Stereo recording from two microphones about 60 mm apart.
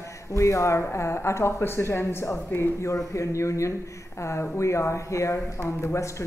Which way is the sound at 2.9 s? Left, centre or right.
Left.